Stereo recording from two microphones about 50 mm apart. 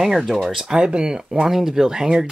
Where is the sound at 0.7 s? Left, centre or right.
Centre.